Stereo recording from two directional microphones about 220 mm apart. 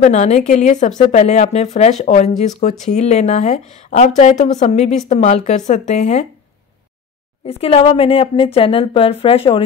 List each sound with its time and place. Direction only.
0.0 s speech: 30° left (ahead or behind)
7.4 s a woman's voice: 25° left (ahead or behind)